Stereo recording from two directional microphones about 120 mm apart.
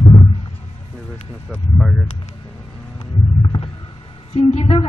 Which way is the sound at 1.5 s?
5° right (ahead or behind).